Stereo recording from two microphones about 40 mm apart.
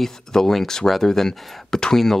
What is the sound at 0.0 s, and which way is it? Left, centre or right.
Speech, centre.